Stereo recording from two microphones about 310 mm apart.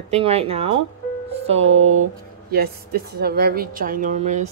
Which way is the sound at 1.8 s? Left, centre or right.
Right.